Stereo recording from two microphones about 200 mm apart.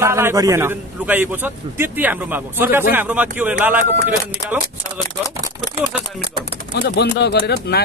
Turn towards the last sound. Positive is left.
turn(degrees=55)  # may be behind; listen again after turning